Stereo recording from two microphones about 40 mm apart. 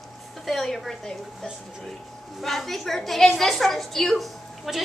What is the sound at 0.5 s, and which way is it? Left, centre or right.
Speech, centre.